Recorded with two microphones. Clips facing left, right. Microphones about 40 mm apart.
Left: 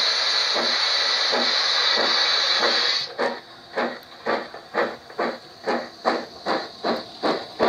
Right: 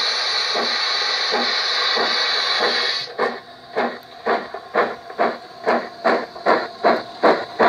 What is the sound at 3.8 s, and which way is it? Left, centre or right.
Printer, centre.